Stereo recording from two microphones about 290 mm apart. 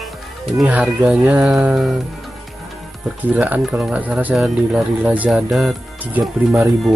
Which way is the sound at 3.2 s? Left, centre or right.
Centre.